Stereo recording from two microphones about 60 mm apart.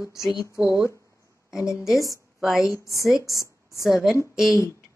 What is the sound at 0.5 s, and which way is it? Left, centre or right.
Speech, left.